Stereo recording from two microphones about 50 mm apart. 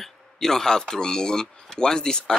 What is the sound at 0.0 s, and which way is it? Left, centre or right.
Speech, centre.